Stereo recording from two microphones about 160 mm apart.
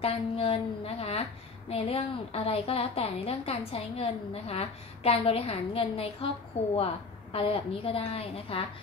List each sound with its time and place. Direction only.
0.0 s a woman's voice: 40° left (ahead or behind)